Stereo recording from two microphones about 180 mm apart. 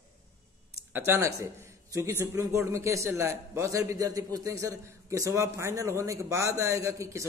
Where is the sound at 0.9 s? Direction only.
15° right (ahead or behind).